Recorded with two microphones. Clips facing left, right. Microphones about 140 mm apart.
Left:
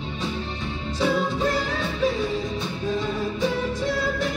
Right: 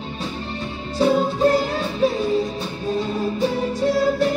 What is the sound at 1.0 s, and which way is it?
Music, 40° right (ahead or behind).